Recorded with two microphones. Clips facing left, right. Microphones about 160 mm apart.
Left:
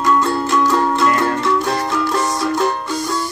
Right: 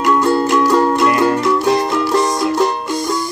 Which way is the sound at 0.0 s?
10° right (ahead or behind).